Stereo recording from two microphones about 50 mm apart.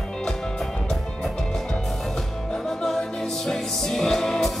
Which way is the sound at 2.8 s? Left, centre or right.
Centre.